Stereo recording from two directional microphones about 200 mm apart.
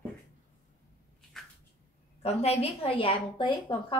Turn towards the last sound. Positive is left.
turn(degrees=25)  # may be behind; listen again after turning